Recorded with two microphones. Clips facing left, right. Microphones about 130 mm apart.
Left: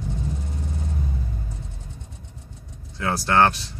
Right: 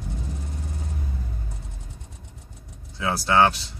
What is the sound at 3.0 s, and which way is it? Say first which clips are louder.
Speech: even; 10° right (ahead or behind).